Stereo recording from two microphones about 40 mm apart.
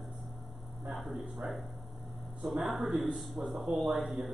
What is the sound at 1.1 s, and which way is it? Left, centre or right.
A woman's voice, centre.